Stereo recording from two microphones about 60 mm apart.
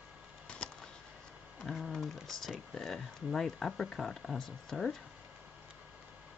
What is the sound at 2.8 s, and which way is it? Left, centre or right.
Speech, centre.